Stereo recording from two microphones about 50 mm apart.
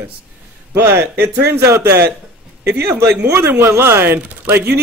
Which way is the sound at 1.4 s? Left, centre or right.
Right.